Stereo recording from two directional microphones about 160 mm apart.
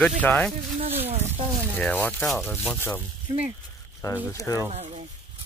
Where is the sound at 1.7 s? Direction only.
10° left (ahead or behind).